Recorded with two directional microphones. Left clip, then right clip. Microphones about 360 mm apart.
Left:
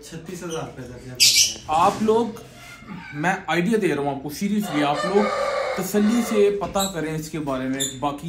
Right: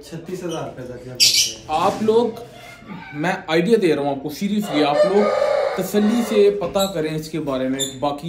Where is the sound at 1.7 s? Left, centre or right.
Centre.